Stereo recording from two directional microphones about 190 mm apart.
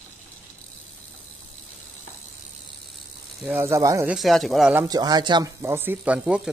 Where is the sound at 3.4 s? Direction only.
15° right (ahead or behind).